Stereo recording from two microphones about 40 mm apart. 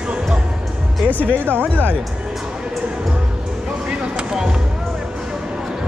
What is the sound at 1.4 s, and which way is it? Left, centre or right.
Speech, right.